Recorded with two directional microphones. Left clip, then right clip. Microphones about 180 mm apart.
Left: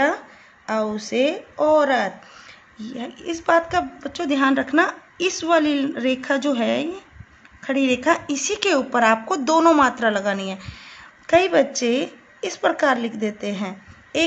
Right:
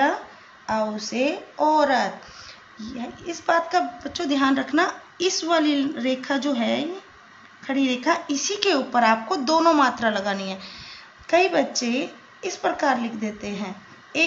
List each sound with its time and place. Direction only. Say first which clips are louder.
0.7 s a woman's voice: left 1 dB; 75° left (ahead or behind)